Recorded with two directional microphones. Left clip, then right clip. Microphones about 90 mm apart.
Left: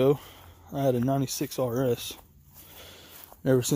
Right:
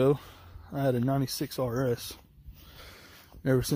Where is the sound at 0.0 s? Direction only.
Centre (ahead or behind).